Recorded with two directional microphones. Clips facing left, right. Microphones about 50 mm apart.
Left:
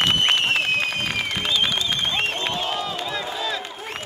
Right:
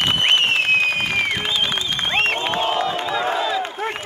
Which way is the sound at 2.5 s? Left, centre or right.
Right.